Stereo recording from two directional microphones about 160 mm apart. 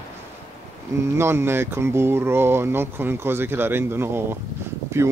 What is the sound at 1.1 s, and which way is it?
Speech, 15° right (ahead or behind).